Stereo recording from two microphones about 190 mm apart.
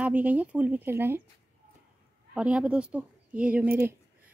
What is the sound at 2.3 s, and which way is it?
A woman's voice, 5° right (ahead or behind).